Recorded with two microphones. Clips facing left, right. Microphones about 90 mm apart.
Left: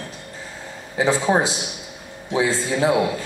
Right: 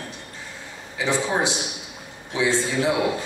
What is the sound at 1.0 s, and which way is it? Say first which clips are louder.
A man's voice: left 5 dB; 35° left (ahead or behind).